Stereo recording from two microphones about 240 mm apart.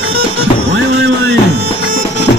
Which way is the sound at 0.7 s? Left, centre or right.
Right.